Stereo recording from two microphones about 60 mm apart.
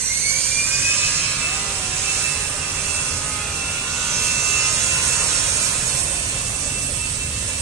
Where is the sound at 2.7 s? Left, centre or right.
Right.